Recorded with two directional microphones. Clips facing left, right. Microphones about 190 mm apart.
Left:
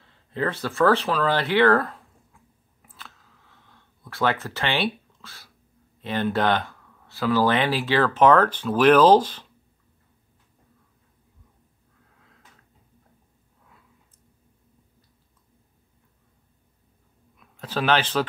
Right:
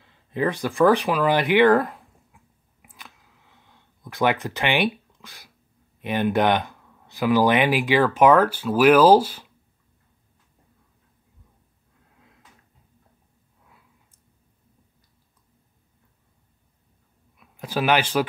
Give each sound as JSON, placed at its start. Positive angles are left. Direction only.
{"t": 0.0, "sound": "a sound", "side_deg": -15}
{"t": 5.9, "sound": "speech", "side_deg": -15}
{"t": 17.4, "sound": "speech", "side_deg": -10}